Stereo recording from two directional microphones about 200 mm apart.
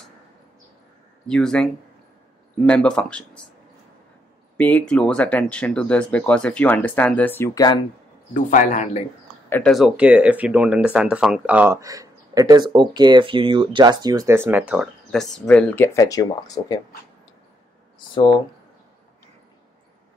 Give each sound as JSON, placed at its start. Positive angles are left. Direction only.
{"t": 1.2, "sound": "speech", "side_deg": 5}
{"t": 2.7, "sound": "speech", "side_deg": 5}
{"t": 4.6, "sound": "speech", "side_deg": 5}
{"t": 8.3, "sound": "speech", "side_deg": 40}
{"t": 9.5, "sound": "speech", "side_deg": 5}
{"t": 14.7, "sound": "speech", "side_deg": 0}
{"t": 18.1, "sound": "speech", "side_deg": 25}